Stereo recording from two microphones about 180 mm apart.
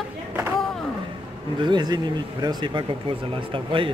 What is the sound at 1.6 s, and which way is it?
Speech, 25° right (ahead or behind).